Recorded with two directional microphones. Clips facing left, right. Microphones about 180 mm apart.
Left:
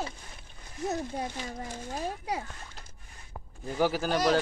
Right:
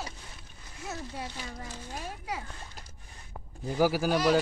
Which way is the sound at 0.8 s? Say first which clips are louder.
Left 6 dB; 50° left (ahead or behind).